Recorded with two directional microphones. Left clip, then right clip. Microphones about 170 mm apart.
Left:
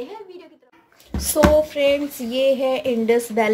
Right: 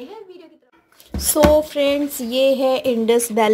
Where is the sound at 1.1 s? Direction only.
40° right (ahead or behind).